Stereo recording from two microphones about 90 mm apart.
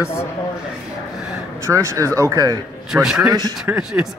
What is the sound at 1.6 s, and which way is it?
Speech, 35° right (ahead or behind).